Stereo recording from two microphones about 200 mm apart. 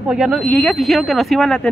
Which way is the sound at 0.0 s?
5° right (ahead or behind).